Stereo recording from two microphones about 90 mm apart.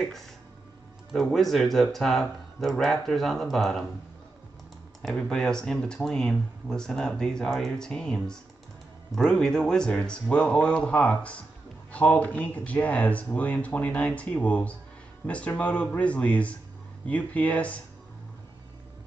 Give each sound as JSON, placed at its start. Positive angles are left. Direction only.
{"t": 1.3, "sound": "speech", "side_deg": 0}
{"t": 5.0, "sound": "speech", "side_deg": 5}